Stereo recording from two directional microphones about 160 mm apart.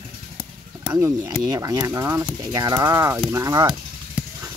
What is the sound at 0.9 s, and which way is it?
Speech, 20° right (ahead or behind).